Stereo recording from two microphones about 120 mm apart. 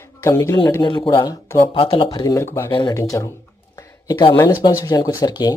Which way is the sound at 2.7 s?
40° left (ahead or behind).